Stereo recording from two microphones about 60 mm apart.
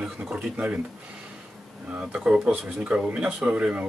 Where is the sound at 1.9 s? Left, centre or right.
Centre.